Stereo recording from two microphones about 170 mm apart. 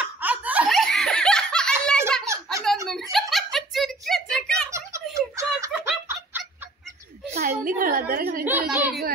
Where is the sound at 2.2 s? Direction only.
15° right (ahead or behind).